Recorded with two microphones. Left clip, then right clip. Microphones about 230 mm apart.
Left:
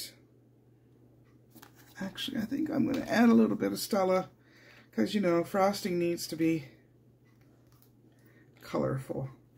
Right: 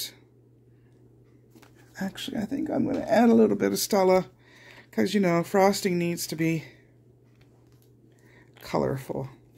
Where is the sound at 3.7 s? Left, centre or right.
Right.